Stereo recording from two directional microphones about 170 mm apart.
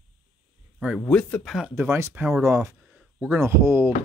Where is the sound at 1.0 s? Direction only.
5° left (ahead or behind).